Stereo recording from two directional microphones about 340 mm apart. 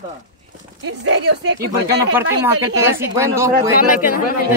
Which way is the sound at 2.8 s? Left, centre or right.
Centre.